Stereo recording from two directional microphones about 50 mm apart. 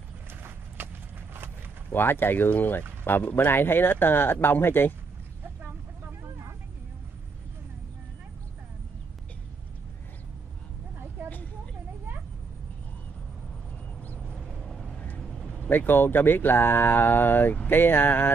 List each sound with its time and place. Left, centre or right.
0.3 s clip-clop: right
1.9 s speech: left
14.2 s vehicle: centre
15.0 s vehicle: left
15.2 s a sound: centre
15.7 s speech: left